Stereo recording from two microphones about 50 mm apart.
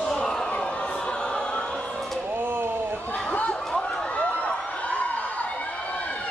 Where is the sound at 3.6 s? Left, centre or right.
Centre.